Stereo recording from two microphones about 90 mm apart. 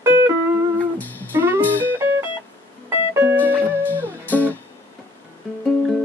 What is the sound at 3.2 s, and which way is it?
Music, 25° right (ahead or behind).